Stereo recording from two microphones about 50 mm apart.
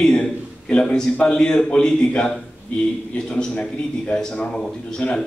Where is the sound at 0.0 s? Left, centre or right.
Left.